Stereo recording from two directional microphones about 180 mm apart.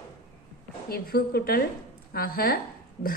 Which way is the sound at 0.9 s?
55° left (ahead or behind).